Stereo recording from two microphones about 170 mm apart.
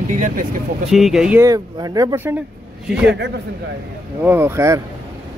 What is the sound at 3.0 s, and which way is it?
Speech, 90° right.